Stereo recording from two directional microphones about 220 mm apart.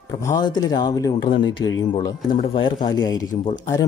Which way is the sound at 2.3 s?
25° left (ahead or behind).